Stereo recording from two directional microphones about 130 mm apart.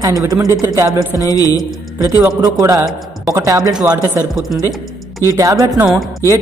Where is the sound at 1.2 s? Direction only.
25° left (ahead or behind).